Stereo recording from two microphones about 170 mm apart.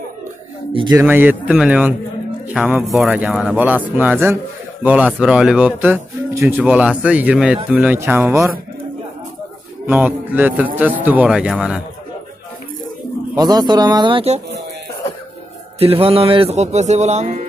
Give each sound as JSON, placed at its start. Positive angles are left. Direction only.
{"t": 0.9, "sound": "speech", "side_deg": -10}
{"t": 9.8, "sound": "speech", "side_deg": -10}
{"t": 13.4, "sound": "speech", "side_deg": -25}
{"t": 15.8, "sound": "speech", "side_deg": -35}